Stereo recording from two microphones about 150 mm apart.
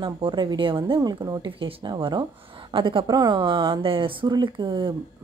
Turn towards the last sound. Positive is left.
turn(degrees=-35)  # may be behind; listen again after turning